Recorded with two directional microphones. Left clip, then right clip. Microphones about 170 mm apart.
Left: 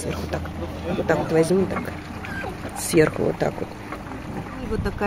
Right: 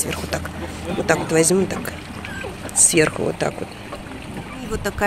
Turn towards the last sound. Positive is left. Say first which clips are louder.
# right 1 dB
turn(degrees=10)  # may be behind; listen again after turning